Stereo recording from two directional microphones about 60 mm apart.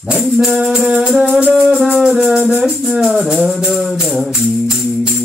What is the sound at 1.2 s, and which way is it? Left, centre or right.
Music, right.